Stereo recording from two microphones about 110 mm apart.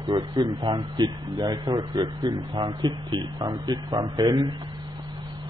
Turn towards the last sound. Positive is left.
turn(degrees=-40)  # may be behind; listen again after turning